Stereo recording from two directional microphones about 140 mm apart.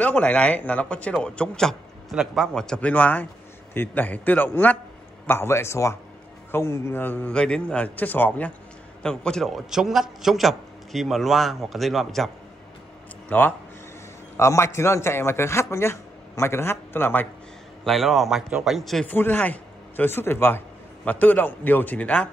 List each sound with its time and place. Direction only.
0.0 s a man's voice: 10° left (ahead or behind)
13.3 s a man's voice: 15° left (ahead or behind)
17.8 s a man's voice: centre (ahead or behind)
19.1 s a man's voice: 15° left (ahead or behind)